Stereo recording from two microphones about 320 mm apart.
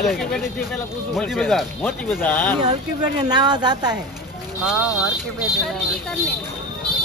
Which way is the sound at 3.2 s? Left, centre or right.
Centre.